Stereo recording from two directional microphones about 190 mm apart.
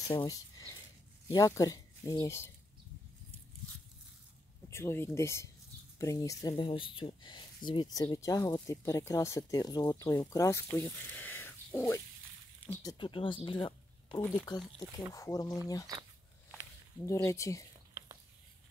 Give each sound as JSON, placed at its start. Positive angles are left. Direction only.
{"t": 0.1, "sound": "speech", "side_deg": 20}
{"t": 4.6, "sound": "speech", "side_deg": 15}
{"t": 12.9, "sound": "speech", "side_deg": 25}
{"t": 15.9, "sound": "speech", "side_deg": -20}
{"t": 17.0, "sound": "speech", "side_deg": 15}